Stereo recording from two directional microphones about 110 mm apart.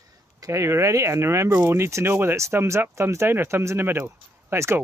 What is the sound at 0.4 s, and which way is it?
Speech, 25° right (ahead or behind).